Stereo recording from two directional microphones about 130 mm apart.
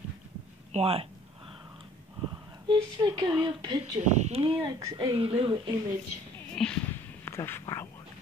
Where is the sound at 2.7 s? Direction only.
35° right (ahead or behind).